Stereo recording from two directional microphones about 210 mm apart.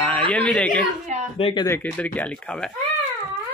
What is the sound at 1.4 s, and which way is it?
Speech, 20° left (ahead or behind).